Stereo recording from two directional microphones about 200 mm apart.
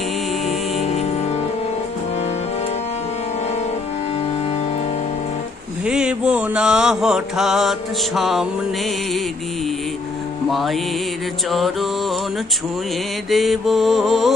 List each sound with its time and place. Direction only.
0.8 s music: 35° left (ahead or behind)
5.9 s mantra: 5° right (ahead or behind)
10.5 s mantra: centre (ahead or behind)
11.5 s music: centre (ahead or behind)
13.3 s mantra: centre (ahead or behind)